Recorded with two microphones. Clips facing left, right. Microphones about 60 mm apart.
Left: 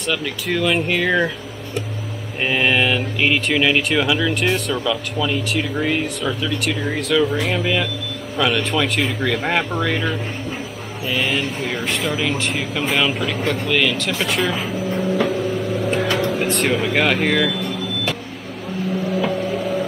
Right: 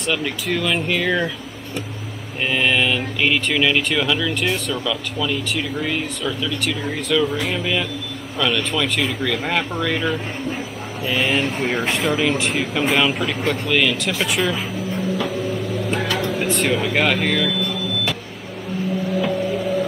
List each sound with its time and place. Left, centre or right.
0.0 s speech: centre
0.5 s speech: centre
2.4 s speech: centre
11.1 s speech: centre
11.7 s speech: centre
12.0 s speech: centre
14.4 s speech: centre
19.1 s vehicle: centre